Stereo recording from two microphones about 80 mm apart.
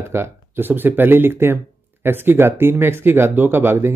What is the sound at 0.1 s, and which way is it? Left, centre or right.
Speech, right.